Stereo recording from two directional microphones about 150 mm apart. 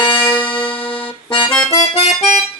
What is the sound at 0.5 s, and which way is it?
Music, 10° left (ahead or behind).